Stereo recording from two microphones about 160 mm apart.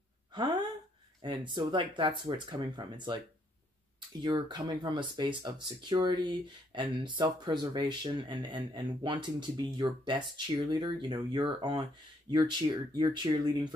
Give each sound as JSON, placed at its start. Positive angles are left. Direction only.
{"t": 0.3, "sound": "speech", "side_deg": -30}
{"t": 4.2, "sound": "speech", "side_deg": -30}